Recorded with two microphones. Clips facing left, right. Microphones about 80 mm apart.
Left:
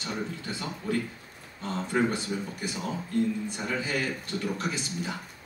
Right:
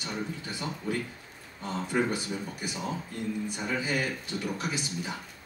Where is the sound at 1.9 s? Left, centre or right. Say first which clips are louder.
Left 2 dB; centre.